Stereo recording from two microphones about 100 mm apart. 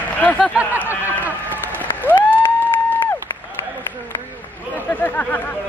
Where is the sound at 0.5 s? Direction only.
15° right (ahead or behind).